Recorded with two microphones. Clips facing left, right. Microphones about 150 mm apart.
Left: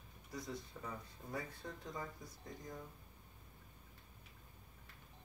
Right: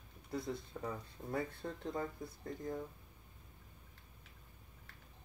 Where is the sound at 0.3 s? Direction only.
55° right (ahead or behind).